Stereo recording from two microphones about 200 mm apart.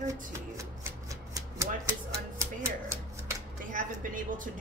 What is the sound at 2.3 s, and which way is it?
Speech, 15° right (ahead or behind).